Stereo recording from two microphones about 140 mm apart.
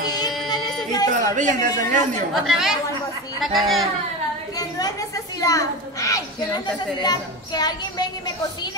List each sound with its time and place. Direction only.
1.1 s speech: 65° right (ahead or behind)
2.3 s speech: centre (ahead or behind)
4.6 s a woman's voice: 25° left (ahead or behind)